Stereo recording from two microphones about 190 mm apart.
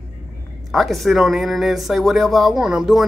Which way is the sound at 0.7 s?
Centre (ahead or behind).